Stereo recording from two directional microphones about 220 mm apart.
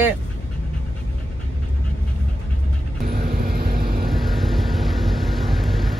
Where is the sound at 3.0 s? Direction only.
45° right (ahead or behind).